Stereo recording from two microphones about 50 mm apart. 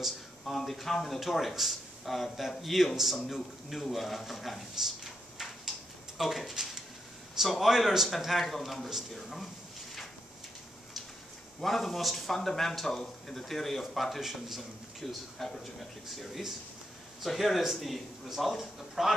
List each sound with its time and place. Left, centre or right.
0.0 s a man's voice: centre
11.6 s speech: centre